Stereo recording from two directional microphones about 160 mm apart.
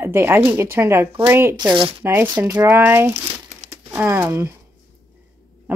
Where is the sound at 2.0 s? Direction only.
15° right (ahead or behind).